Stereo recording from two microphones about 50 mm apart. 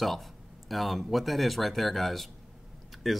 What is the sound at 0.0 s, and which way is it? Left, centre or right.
Speech, centre.